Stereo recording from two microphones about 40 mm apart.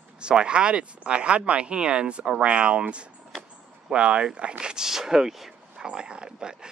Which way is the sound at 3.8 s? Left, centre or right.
Right.